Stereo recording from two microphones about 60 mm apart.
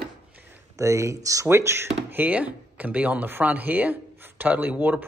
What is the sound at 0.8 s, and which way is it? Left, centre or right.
Speech, right.